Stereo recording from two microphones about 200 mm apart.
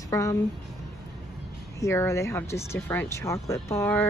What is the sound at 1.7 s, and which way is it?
Speech, 15° left (ahead or behind).